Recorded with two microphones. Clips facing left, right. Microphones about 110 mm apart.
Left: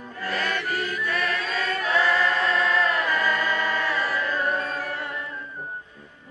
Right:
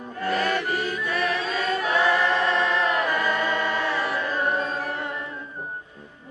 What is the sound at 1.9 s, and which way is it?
Choir, 20° right (ahead or behind).